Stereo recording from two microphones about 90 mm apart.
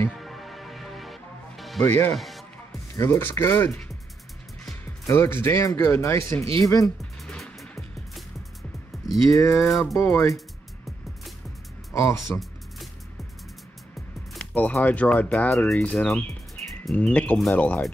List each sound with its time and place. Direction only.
0.1 s music: centre (ahead or behind)
1.9 s speech: 25° left (ahead or behind)
2.1 s music: centre (ahead or behind)
2.9 s speech: 30° left (ahead or behind)
5.1 s speech: 30° left (ahead or behind)
7.0 s music: 5° left (ahead or behind)
8.9 s music: centre (ahead or behind)
9.3 s speech: 35° left (ahead or behind)
9.6 s speech: 5° left (ahead or behind)
9.9 s speech: 35° left (ahead or behind)
11.9 s speech: 35° left (ahead or behind)
14.4 s speech: 15° left (ahead or behind)